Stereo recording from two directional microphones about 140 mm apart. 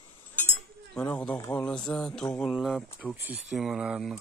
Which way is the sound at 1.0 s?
5° left (ahead or behind).